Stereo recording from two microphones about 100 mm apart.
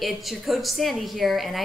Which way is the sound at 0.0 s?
Centre (ahead or behind).